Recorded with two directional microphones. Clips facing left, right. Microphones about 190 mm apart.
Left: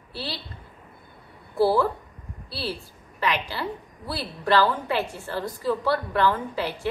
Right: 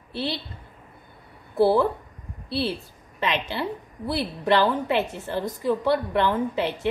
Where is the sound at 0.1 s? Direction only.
20° right (ahead or behind).